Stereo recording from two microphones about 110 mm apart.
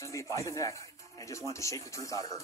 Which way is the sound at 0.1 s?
30° left (ahead or behind).